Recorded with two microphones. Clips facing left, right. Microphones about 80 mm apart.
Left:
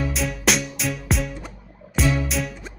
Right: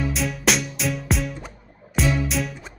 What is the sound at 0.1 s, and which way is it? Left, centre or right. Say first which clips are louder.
Music: even; centre.